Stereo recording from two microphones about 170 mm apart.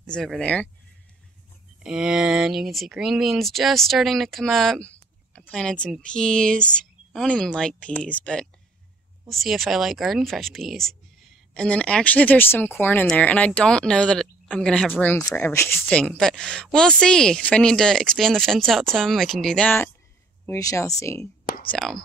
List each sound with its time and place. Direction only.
0.0 s speech: 5° left (ahead or behind)
1.8 s speech: 5° right (ahead or behind)
20.4 s speech: 20° left (ahead or behind)
21.6 s speech: 5° left (ahead or behind)